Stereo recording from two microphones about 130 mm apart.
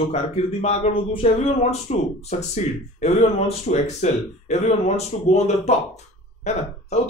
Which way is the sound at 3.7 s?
60° left (ahead or behind).